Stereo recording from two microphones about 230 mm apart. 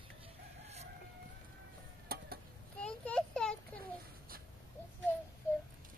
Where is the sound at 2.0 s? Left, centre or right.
Right.